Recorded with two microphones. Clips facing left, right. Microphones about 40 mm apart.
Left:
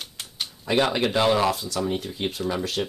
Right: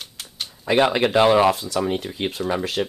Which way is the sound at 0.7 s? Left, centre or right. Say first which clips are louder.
Right 4 dB; right.